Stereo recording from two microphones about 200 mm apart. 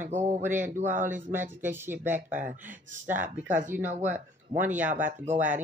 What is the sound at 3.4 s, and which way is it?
Speech, 40° right (ahead or behind).